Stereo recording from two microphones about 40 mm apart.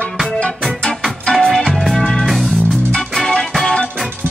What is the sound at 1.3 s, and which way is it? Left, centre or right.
Music, centre.